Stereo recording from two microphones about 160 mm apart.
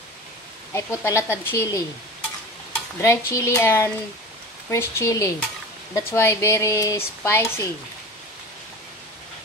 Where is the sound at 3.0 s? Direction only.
15° left (ahead or behind).